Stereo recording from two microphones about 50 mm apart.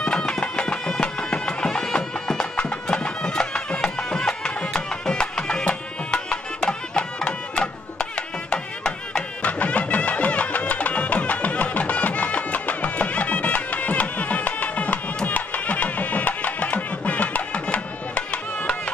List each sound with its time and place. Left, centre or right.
0.0 s music: centre